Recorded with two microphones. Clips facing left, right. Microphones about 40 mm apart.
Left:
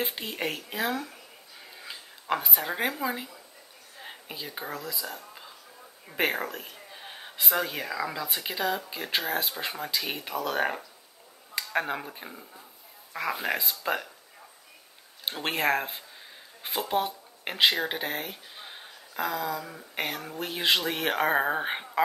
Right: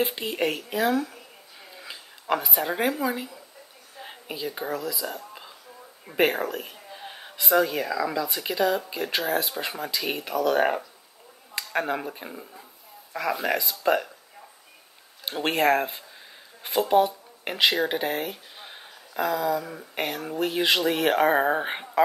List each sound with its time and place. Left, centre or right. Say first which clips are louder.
0.0 s a woman's voice: right 6 dB; centre
5.0 s whispering: right 5 dB; centre
6.0 s speech: right 5 dB; centre
15.4 s speech: right 5 dB; centre